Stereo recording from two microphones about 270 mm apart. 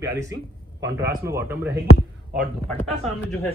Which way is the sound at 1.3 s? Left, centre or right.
Centre.